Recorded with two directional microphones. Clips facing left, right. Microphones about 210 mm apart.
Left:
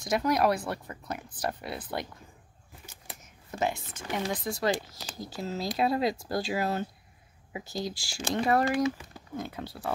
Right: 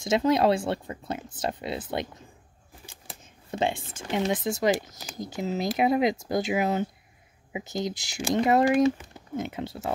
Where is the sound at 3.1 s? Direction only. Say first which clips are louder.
Right 6 dB; 30° right (ahead or behind).